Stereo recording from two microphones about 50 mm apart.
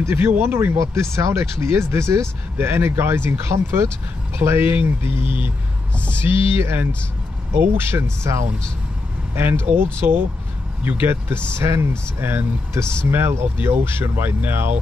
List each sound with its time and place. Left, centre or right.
0.0 s speech: right
1.1 s speech: right
4.6 s speech: right
9.3 s speech: right
11.5 s speech: right